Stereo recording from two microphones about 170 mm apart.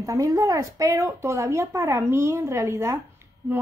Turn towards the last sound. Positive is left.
turn(degrees=-15)  # may be behind; listen again after turning